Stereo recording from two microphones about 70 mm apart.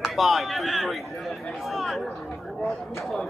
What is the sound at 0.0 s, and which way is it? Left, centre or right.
Speech, centre.